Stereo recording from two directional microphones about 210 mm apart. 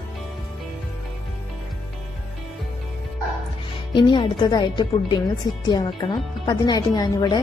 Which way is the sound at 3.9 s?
20° left (ahead or behind).